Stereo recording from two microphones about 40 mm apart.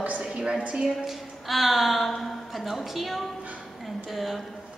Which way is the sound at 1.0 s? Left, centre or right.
Centre.